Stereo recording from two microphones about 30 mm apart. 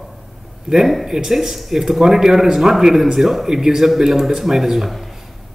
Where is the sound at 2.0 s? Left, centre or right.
Centre.